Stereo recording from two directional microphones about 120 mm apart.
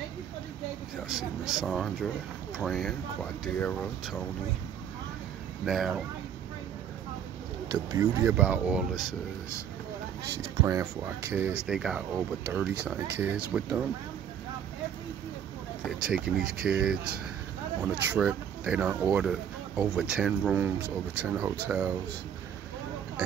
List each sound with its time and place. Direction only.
1.5 s speech: centre (ahead or behind)
5.7 s speech: centre (ahead or behind)
7.6 s speech: 30° right (ahead or behind)
8.4 s speech: 10° right (ahead or behind)
10.3 s speech: 25° right (ahead or behind)
11.6 s speech: 5° right (ahead or behind)
15.8 s speech: 5° right (ahead or behind)